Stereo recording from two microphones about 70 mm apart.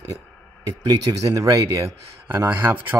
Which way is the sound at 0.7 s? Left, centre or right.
Right.